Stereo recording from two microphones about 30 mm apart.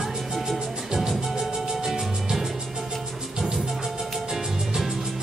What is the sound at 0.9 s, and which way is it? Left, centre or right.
Music, right.